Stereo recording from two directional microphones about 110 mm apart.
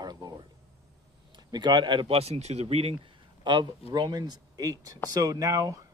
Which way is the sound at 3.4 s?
45° right (ahead or behind).